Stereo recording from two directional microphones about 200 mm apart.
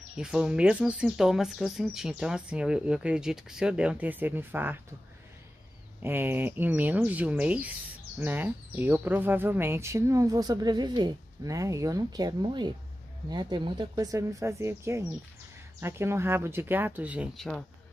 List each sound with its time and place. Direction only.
0.2 s speech: 5° right (ahead or behind)
6.0 s speech: 10° right (ahead or behind)